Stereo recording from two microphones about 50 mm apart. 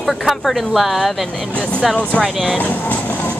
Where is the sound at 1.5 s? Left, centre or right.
Left.